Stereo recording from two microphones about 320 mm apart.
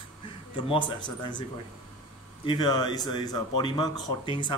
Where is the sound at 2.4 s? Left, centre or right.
Centre.